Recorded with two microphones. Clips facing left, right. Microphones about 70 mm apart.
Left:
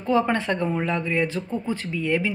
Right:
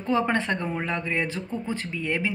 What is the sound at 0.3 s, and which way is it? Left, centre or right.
Speech, right.